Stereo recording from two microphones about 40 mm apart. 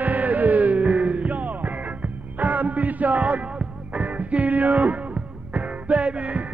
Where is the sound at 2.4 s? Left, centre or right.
Right.